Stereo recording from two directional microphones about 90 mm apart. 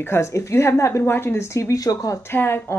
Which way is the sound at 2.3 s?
25° left (ahead or behind).